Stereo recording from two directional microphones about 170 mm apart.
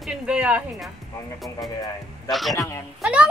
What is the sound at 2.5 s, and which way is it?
Speech, 20° left (ahead or behind).